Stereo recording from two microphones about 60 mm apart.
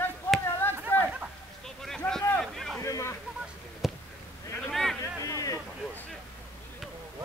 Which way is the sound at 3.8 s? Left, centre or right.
Centre.